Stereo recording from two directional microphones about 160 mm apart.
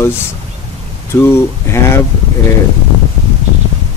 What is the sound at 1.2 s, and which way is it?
Speech, 15° left (ahead or behind).